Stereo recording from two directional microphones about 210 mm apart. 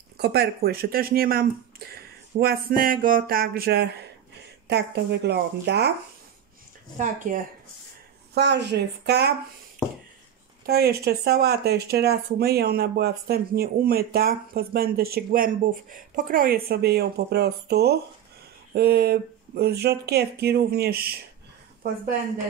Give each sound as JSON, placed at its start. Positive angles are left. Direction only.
{"t": 0.2, "sound": "speech", "side_deg": -50}
{"t": 7.0, "sound": "speech", "side_deg": -40}
{"t": 8.4, "sound": "speech", "side_deg": -55}
{"t": 10.7, "sound": "speech", "side_deg": -50}